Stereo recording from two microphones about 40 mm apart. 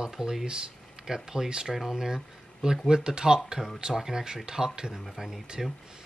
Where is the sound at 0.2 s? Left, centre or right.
Centre.